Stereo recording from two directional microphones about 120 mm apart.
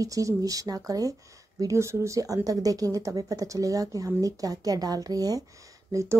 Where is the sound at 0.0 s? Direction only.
30° right (ahead or behind).